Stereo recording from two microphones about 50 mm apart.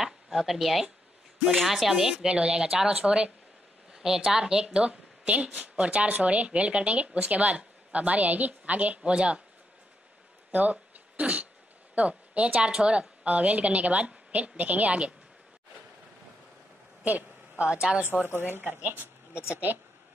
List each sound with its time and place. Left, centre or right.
0.0 s a sound: centre
1.5 s speech: centre
2.1 s a woman's voice: centre
10.5 s a sound: right
11.9 s a woman's voice: right
17.0 s a woman's voice: right
18.4 s speech: right